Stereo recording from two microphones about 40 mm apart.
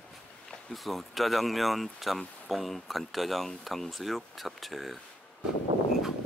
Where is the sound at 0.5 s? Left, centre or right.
Centre.